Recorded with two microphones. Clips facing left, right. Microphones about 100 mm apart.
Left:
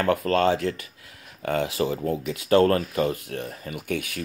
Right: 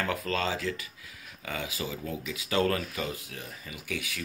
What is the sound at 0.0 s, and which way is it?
Speech, 55° left (ahead or behind).